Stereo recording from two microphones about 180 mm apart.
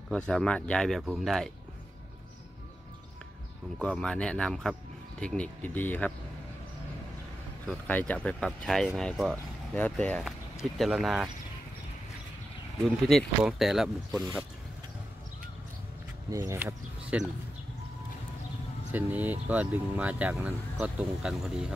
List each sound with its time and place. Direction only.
0.1 s speech: 5° left (ahead or behind)
3.8 s speech: 5° left (ahead or behind)
7.6 s speech: 5° left (ahead or behind)
12.8 s speech: centre (ahead or behind)
16.3 s speech: 20° right (ahead or behind)
18.9 s speech: 10° right (ahead or behind)